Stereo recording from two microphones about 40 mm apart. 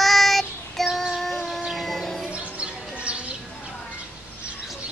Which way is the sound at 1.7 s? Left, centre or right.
Centre.